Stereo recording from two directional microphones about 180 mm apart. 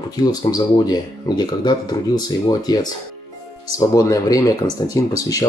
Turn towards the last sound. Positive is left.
turn(degrees=20)  # may be behind; listen again after turning